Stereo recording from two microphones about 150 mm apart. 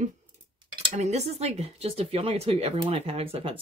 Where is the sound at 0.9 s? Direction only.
45° right (ahead or behind).